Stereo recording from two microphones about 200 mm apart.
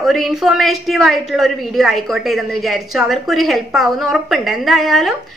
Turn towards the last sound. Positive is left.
turn(degrees=0)  # may be behind; listen again after turning